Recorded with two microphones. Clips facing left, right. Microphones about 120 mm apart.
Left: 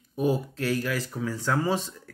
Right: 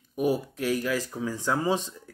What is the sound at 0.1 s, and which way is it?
Speech, 15° right (ahead or behind).